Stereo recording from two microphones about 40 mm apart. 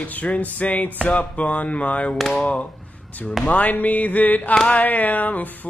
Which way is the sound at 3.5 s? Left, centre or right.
Left.